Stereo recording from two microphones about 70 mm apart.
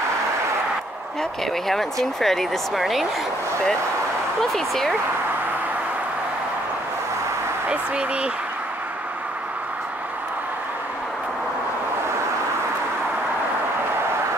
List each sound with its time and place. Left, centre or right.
2.1 s speech: centre
4.4 s speech: centre
7.6 s speech: centre